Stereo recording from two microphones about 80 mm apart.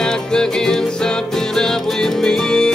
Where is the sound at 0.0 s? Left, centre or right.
Centre.